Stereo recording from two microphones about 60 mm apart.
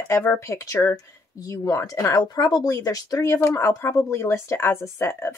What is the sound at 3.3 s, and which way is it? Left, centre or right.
Speech, left.